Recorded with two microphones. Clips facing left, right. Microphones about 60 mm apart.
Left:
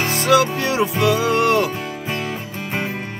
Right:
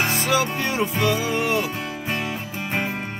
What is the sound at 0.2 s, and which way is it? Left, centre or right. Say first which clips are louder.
Music: left 6 dB; left.